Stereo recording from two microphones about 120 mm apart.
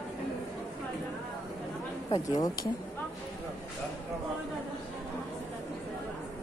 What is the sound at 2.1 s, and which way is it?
Speech, 30° left (ahead or behind).